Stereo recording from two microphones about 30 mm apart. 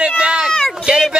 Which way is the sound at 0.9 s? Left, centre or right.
Right.